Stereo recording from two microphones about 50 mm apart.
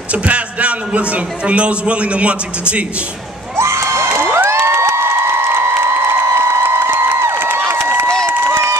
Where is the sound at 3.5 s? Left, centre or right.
Right.